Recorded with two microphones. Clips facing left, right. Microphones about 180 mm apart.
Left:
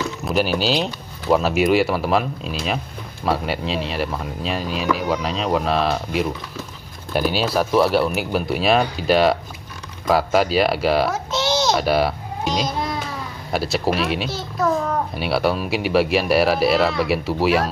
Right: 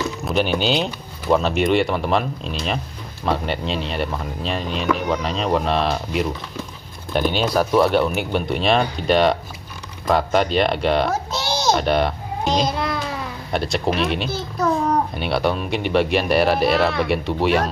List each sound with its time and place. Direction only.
0.2 s speech: centre (ahead or behind)
11.1 s a child's voice: 40° right (ahead or behind)
11.7 s speech: 5° left (ahead or behind)
12.6 s a sound: 65° right (ahead or behind)
13.5 s speech: 5° left (ahead or behind)